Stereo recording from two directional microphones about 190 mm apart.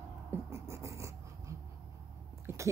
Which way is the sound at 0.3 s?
15° right (ahead or behind).